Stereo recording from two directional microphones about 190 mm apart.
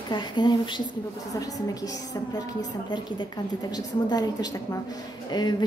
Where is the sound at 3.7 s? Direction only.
20° left (ahead or behind).